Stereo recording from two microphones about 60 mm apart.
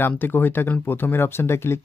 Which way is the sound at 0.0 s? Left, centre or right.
Left.